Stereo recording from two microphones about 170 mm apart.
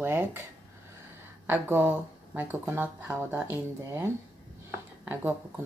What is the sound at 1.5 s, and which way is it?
Speech, 10° right (ahead or behind).